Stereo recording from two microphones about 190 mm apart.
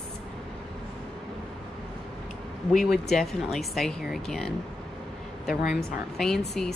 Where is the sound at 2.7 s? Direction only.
Centre (ahead or behind).